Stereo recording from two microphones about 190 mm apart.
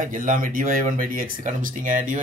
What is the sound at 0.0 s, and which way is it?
Speech, 45° right (ahead or behind).